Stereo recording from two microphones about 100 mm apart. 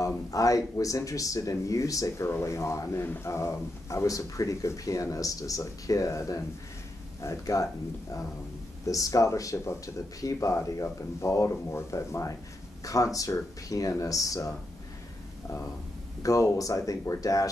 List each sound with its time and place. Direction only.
0.0 s speech: 35° left (ahead or behind)
8.8 s speech: 35° left (ahead or behind)
16.2 s speech: 35° left (ahead or behind)